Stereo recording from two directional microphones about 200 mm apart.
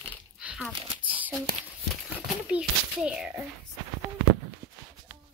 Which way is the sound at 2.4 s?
5° right (ahead or behind).